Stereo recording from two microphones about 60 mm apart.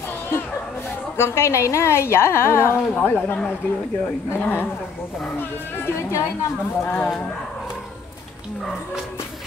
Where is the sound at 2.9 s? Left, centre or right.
Left.